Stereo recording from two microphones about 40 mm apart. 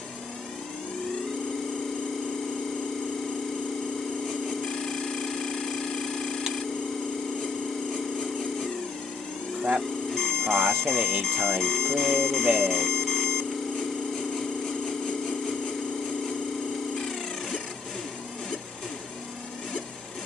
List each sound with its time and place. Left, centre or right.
4.5 s a sound: centre
10.1 s speech: centre
12.5 s alarm clock: centre
15.0 s engine: centre